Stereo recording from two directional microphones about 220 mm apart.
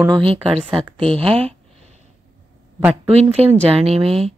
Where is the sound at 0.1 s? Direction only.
25° right (ahead or behind).